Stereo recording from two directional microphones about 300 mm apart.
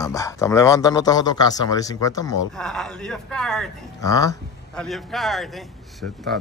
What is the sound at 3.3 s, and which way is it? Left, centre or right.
Speech, centre.